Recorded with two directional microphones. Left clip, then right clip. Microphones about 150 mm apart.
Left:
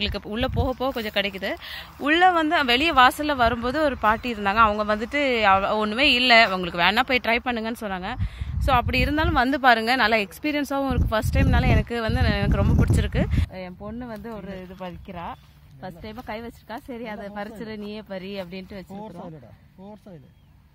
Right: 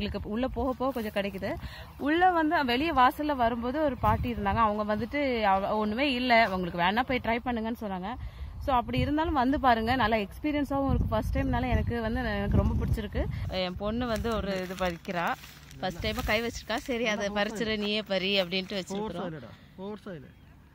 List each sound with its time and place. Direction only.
0.0 s speech: 5° right (ahead or behind)
15.8 s speech: centre (ahead or behind)